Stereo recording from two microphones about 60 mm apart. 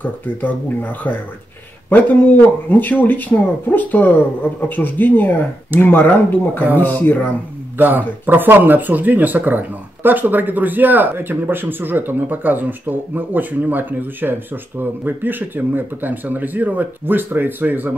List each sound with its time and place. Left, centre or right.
0.0 s speech: left
7.7 s speech: right